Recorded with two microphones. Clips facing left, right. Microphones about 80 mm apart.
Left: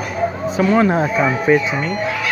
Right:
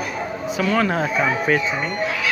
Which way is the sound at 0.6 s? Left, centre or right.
Left.